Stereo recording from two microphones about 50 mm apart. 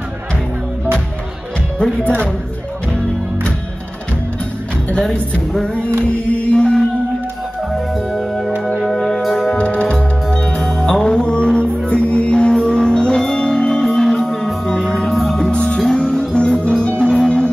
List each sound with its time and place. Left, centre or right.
2.0 s speech: centre
6.1 s music: left
7.7 s music: centre
9.6 s music: left; by 15.5 s centre
15.5 s music: left